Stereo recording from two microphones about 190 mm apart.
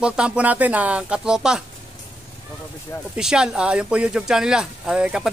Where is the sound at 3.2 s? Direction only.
5° right (ahead or behind).